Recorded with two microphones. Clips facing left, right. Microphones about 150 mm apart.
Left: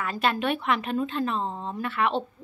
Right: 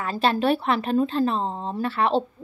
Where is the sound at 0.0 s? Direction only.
30° right (ahead or behind).